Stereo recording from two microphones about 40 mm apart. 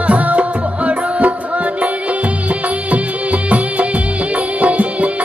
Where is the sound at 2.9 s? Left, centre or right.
Right.